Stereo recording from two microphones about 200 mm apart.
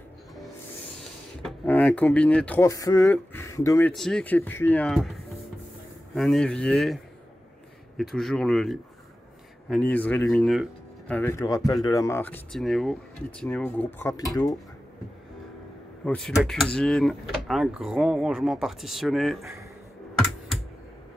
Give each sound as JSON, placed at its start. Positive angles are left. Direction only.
{"t": 1.4, "sound": "speech", "side_deg": 5}
{"t": 3.9, "sound": "speech", "side_deg": 0}
{"t": 8.0, "sound": "speech", "side_deg": 0}
{"t": 16.1, "sound": "speech", "side_deg": 5}